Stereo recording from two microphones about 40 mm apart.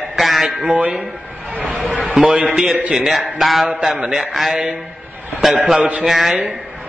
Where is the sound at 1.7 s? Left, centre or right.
Centre.